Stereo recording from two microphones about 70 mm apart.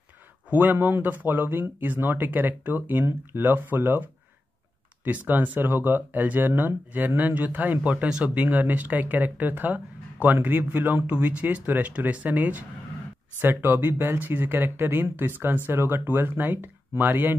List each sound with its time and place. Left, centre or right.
0.5 s speech: right